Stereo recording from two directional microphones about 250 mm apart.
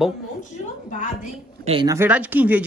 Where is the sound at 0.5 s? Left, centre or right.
Left.